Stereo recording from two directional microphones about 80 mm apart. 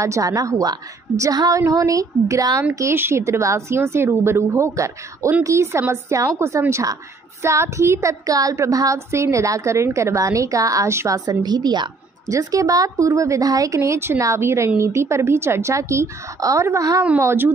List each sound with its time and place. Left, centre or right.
0.0 s a woman's voice: right
2.7 s child singing: right
6.7 s a woman's voice: right
7.4 s child singing: right
11.1 s a woman's voice: right
12.3 s child singing: right
17.2 s child singing: right